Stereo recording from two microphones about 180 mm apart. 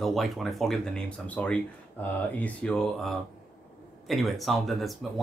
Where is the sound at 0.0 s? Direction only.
Centre (ahead or behind).